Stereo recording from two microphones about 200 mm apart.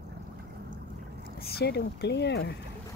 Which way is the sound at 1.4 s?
55° left (ahead or behind).